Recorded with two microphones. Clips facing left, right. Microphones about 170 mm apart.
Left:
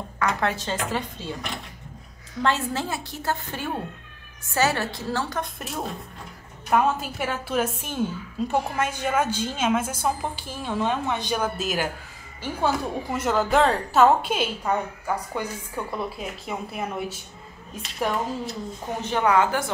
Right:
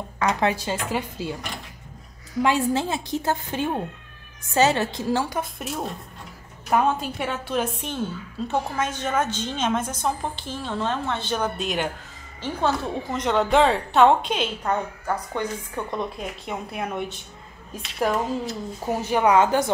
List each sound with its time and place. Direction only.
0.2 s a woman's voice: 20° right (ahead or behind)
2.4 s a woman's voice: 15° right (ahead or behind)
5.6 s a woman's voice: centre (ahead or behind); by 19.7 s 20° right (ahead or behind)